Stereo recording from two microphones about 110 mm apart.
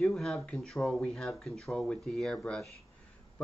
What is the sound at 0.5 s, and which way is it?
Speech, centre (ahead or behind).